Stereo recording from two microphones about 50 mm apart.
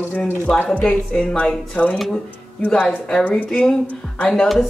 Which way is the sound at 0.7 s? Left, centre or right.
Left.